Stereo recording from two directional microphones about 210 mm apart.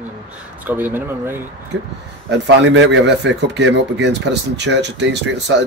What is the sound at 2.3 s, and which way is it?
Speech, 55° right (ahead or behind).